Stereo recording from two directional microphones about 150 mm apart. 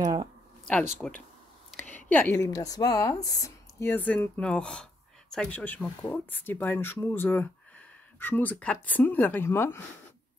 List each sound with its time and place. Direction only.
0.0 s speech: 25° right (ahead or behind)
1.0 s a woman's voice: 5° left (ahead or behind)
2.3 s speech: 25° left (ahead or behind)